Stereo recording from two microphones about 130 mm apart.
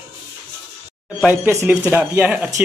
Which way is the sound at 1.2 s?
15° right (ahead or behind).